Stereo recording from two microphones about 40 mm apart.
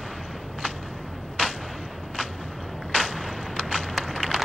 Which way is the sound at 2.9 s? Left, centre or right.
Centre.